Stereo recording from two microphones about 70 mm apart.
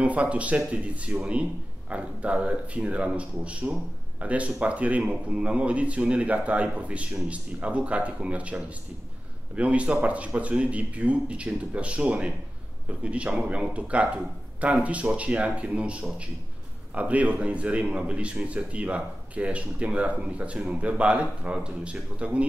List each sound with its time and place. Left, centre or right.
0.0 s a man's voice: centre